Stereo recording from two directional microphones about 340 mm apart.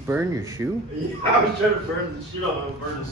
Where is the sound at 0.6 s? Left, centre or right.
Centre.